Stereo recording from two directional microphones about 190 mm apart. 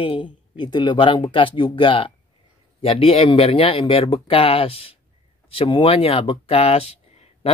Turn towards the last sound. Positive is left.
turn(degrees=30)  # may be behind; listen again after turning